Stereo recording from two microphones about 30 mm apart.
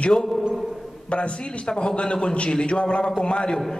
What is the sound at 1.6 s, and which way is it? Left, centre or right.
Speech, left.